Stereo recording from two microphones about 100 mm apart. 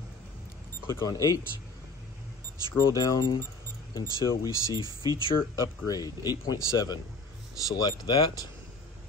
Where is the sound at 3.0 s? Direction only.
40° left (ahead or behind).